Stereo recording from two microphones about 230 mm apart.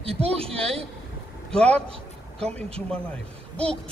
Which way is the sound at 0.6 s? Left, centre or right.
Centre.